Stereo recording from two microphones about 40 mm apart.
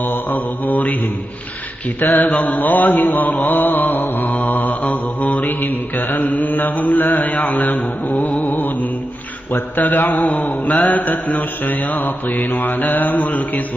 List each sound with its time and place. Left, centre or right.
0.0 s mantra: left
2.0 s mantra: left